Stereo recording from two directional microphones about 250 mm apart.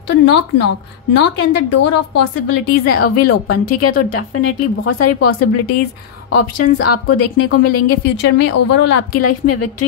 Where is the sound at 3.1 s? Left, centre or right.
Left.